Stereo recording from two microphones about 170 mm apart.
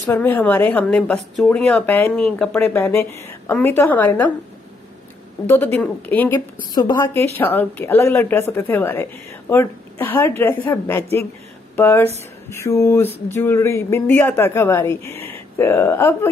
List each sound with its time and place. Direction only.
0.0 s speech: 15° left (ahead or behind)
5.5 s speech: 10° left (ahead or behind)
6.7 s a woman's voice: 25° left (ahead or behind)
7.3 s speech: 10° left (ahead or behind)
15.1 s a sound: 35° right (ahead or behind)
15.5 s speech: 15° left (ahead or behind)